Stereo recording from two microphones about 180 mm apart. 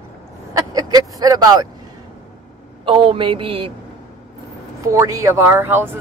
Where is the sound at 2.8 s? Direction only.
30° right (ahead or behind).